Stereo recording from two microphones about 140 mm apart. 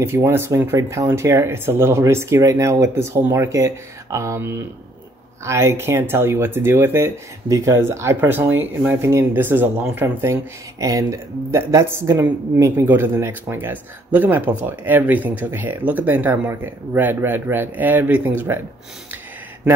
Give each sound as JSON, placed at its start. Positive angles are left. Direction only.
{"t": 0.0, "sound": "speech", "side_deg": -20}